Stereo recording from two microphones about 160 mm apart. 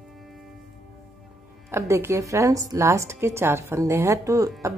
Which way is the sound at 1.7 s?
15° right (ahead or behind).